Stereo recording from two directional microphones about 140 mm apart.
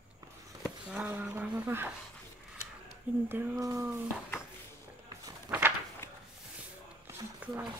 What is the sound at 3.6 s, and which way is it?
Speech, 25° right (ahead or behind).